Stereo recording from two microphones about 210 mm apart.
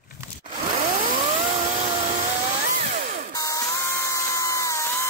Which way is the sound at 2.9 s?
45° right (ahead or behind).